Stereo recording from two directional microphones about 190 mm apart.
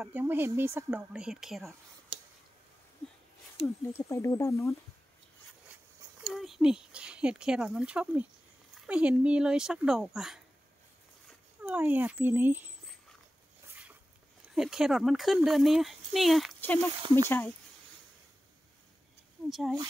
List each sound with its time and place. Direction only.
0.0 s speech: 10° right (ahead or behind)
3.8 s speech: 15° left (ahead or behind)
5.7 s a sound: 5° right (ahead or behind)
6.2 s speech: centre (ahead or behind)
11.6 s speech: 10° right (ahead or behind)
14.4 s speech: centre (ahead or behind)
19.5 s speech: centre (ahead or behind)